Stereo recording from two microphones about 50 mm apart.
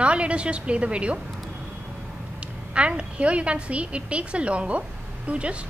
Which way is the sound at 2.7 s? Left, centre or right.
Right.